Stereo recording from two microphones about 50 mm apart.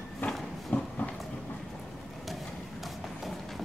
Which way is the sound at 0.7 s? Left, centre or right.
Left.